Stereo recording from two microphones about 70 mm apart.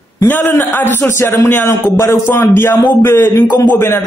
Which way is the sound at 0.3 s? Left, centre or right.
Left.